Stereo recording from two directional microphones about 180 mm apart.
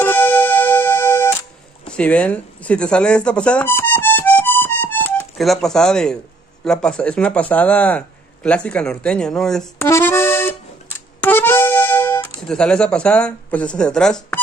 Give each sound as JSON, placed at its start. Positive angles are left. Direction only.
{"t": 0.0, "sound": "keyboard", "side_deg": 10}
{"t": 1.9, "sound": "a sound", "side_deg": 5}
{"t": 6.6, "sound": "speech", "side_deg": 5}
{"t": 9.8, "sound": "accordion", "side_deg": 15}